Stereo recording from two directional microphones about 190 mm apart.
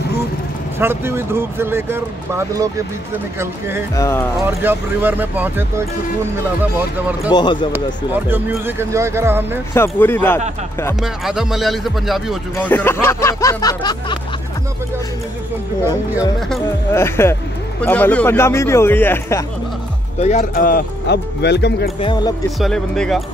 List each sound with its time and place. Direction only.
0.7 s speech: 10° right (ahead or behind)
3.9 s speech: 15° left (ahead or behind)
4.5 s speech: 10° right (ahead or behind)
7.3 s speech: 25° left (ahead or behind)
7.7 s speech: 10° right (ahead or behind)
9.8 s speech: 10° left (ahead or behind)
11.0 s speech: centre (ahead or behind)
12.5 s speech: 10° left (ahead or behind)
16.2 s speech: centre (ahead or behind)
16.9 s speech: 15° left (ahead or behind)
20.2 s speech: 35° left (ahead or behind)
20.5 s speech: 50° left (ahead or behind)
22.0 s speech: 25° left (ahead or behind)
22.6 s speech: 5° left (ahead or behind)